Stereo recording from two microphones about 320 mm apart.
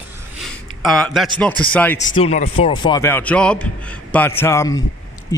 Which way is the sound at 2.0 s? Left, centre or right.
Left.